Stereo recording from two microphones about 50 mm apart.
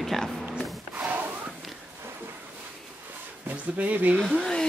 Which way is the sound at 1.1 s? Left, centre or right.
Right.